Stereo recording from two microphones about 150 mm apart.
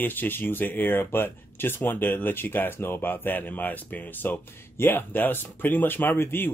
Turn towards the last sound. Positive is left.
turn(degrees=15)  # may be behind; listen again after turning